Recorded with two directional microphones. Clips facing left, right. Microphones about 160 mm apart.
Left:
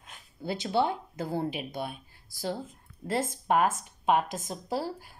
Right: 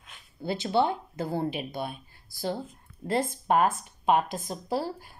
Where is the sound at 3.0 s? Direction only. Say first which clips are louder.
Right 2 dB; 5° left (ahead or behind).